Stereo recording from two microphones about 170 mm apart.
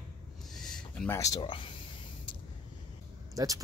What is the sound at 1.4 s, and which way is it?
Speech, 30° left (ahead or behind).